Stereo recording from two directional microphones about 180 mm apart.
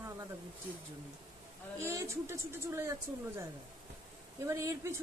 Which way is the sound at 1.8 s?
15° right (ahead or behind).